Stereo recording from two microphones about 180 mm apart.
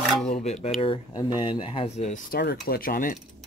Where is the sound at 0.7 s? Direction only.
25° left (ahead or behind).